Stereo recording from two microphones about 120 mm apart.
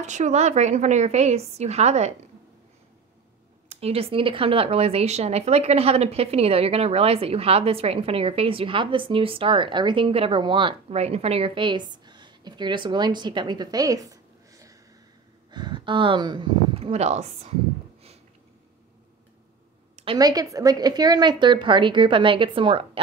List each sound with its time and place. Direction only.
0.0 s a woman's voice: 80° right
3.6 s speech: 60° right (ahead or behind); by 10.8 s 40° right (ahead or behind)
10.9 s a woman's voice: 60° right (ahead or behind); by 14.8 s 30° right (ahead or behind)
15.5 s speech: 40° right (ahead or behind)
16.7 s speech: 60° right (ahead or behind)
20.2 s a woman's voice: 30° right (ahead or behind)